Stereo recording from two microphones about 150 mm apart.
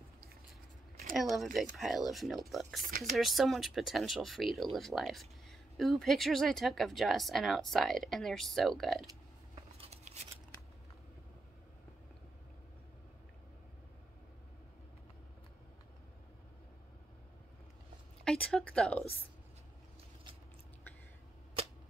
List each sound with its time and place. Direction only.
1.1 s speech: centre (ahead or behind)
9.8 s scissors: 45° right (ahead or behind)
18.2 s speech: 5° left (ahead or behind)